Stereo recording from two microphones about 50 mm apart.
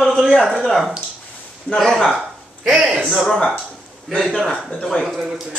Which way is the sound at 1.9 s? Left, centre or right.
Centre.